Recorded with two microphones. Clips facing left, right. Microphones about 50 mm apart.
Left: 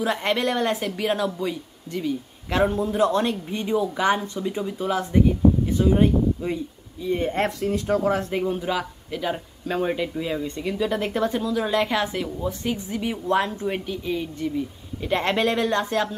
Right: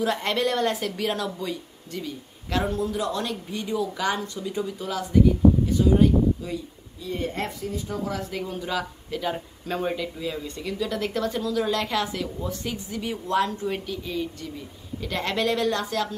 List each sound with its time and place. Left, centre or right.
0.0 s speech: centre
2.5 s speech: left
7.4 s speech: left
8.0 s speech: left
8.3 s speech: left; by 9.9 s centre
9.9 s speech: left